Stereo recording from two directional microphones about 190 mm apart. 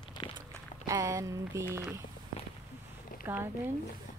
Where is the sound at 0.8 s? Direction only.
15° right (ahead or behind).